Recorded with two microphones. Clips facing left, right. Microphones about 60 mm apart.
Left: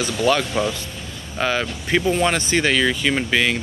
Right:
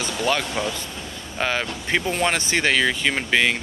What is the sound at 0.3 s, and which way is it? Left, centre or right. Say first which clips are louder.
Speech: left 4 dB; right.